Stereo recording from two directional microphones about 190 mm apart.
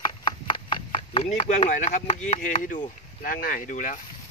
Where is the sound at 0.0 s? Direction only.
25° left (ahead or behind).